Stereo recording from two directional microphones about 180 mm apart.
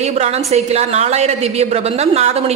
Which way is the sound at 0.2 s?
35° right (ahead or behind).